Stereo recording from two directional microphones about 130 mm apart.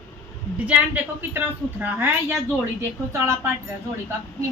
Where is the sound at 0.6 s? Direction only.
10° right (ahead or behind).